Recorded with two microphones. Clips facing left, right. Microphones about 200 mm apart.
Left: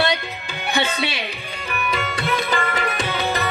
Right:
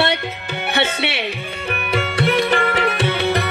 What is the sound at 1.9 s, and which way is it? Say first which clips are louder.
Tabla: right 6 dB; 65° right (ahead or behind).